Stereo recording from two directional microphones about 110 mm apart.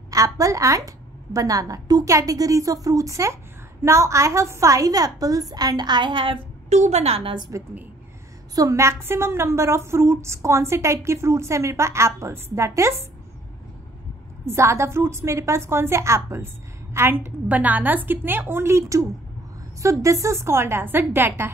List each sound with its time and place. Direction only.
0.1 s a woman's voice: 30° right (ahead or behind); by 6.4 s 50° right (ahead or behind)
6.7 s a woman's voice: 90° right; by 7.3 s 70° right (ahead or behind)
8.5 s a woman's voice: 30° right (ahead or behind)
14.4 s a woman's voice: 25° right (ahead or behind)